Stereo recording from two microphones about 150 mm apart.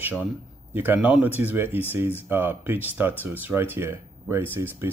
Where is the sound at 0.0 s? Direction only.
10° right (ahead or behind).